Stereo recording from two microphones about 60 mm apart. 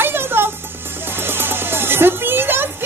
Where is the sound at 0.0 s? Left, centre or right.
Right.